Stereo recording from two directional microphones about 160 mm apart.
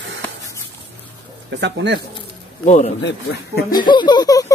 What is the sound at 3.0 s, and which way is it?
Speech, 85° left.